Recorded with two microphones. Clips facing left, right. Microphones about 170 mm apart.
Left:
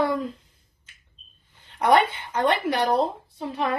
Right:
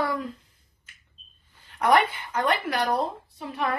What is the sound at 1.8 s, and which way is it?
Speech, 25° left (ahead or behind).